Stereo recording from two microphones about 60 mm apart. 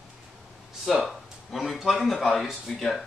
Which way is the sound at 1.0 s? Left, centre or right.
Centre.